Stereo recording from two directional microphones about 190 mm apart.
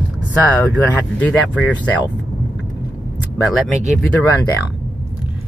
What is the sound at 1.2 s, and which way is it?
Speech, 5° left (ahead or behind).